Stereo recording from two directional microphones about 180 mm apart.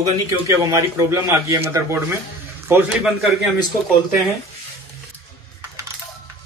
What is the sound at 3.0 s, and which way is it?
Speech, centre (ahead or behind).